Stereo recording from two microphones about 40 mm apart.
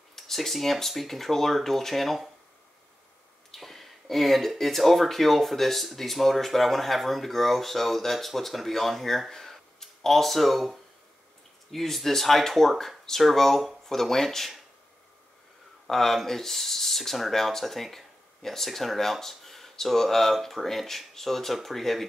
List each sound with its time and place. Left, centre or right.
0.1 s speech: centre
3.5 s speech: centre
9.3 s a sound: centre
11.7 s speech: centre
15.9 s speech: centre